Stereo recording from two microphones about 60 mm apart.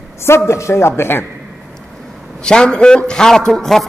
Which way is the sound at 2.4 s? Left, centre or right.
Centre.